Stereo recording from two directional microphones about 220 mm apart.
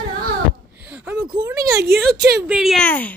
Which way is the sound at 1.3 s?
15° right (ahead or behind).